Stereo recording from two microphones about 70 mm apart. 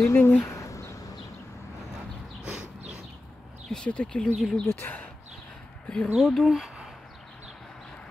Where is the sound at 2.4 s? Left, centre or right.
Centre.